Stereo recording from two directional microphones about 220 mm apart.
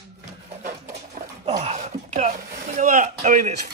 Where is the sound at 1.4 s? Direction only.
30° right (ahead or behind).